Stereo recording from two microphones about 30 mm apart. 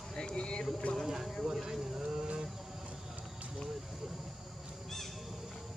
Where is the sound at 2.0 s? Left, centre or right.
Right.